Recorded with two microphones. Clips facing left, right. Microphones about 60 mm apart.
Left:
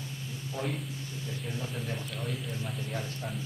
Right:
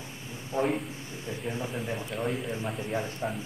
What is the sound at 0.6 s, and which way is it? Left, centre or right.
A man's voice, right.